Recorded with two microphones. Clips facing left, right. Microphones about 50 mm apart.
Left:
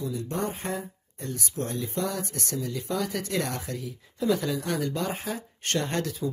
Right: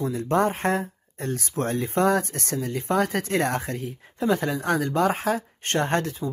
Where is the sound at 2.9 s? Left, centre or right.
Right.